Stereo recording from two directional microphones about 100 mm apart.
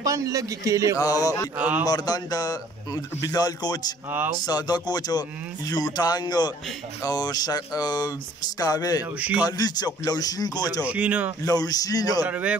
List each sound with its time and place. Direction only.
0.0 s a man's voice: 35° right (ahead or behind)
0.9 s speech: 35° left (ahead or behind)
1.6 s speech: 15° right (ahead or behind)
1.9 s speech: 40° left (ahead or behind)
10.8 s speech: 15° right (ahead or behind)
11.4 s speech: 40° left (ahead or behind)
12.3 s speech: 15° right (ahead or behind)